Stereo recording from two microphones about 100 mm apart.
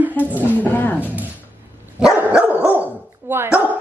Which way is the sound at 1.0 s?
15° right (ahead or behind).